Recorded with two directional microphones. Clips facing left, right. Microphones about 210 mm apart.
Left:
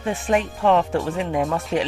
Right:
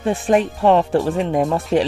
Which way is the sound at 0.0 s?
35° right (ahead or behind).